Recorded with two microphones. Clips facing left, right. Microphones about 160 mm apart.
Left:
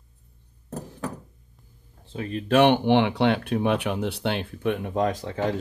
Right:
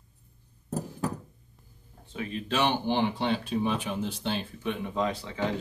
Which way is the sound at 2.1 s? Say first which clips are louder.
Left 9 dB; 40° left (ahead or behind).